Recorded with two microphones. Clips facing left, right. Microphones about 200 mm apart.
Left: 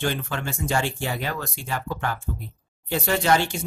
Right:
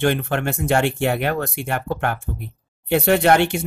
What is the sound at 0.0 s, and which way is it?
Speech, 60° right (ahead or behind).